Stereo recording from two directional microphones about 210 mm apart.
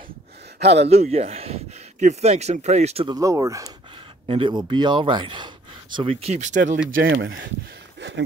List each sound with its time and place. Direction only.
0.6 s speech: 55° right (ahead or behind)
0.8 s speech: 30° right (ahead or behind)
3.2 s speech: 15° right (ahead or behind); by 6.8 s 35° right (ahead or behind)
7.0 s speech: 50° right (ahead or behind)